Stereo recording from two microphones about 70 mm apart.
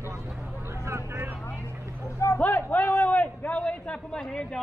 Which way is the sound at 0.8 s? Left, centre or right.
Right.